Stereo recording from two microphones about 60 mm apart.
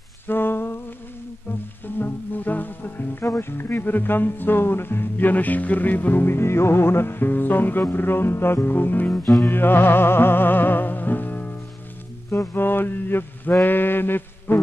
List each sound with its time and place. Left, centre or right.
0.3 s a sound: left
2.0 s music: left
3.3 s speech: left
9.4 s music: left
12.3 s mantra: left